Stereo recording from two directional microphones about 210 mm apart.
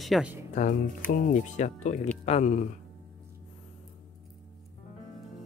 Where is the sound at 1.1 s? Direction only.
35° left (ahead or behind).